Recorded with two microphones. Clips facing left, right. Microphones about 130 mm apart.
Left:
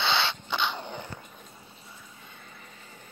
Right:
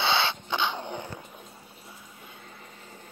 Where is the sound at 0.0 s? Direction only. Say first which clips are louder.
Right 2 dB; 15° right (ahead or behind).